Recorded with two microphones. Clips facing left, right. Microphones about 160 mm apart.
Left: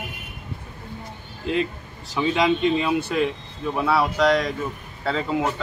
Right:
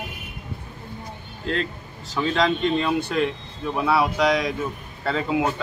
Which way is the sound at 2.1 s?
10° left (ahead or behind).